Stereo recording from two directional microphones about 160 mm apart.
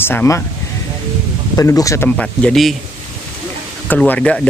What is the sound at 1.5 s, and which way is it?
Speech, 20° left (ahead or behind).